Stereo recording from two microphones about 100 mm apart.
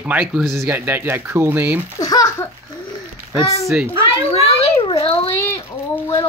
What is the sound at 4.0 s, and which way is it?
Speech, 85° left.